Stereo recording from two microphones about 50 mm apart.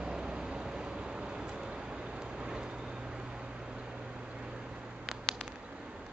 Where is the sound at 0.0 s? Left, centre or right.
Centre.